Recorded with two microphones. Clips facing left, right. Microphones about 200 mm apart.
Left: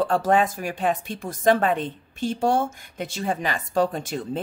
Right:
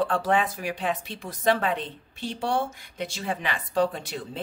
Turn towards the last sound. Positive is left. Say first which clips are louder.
# left 6 dB
turn(degrees=45)  # may be behind; listen again after turning